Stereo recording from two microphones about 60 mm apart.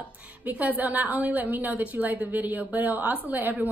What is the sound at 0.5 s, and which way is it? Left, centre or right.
A woman's voice, right.